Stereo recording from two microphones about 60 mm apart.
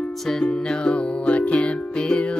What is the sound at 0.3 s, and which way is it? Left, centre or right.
Music, centre.